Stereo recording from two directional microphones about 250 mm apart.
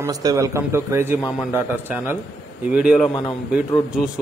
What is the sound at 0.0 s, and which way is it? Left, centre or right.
A man's voice, centre.